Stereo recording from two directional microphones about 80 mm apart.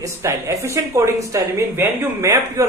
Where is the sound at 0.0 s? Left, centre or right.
Right.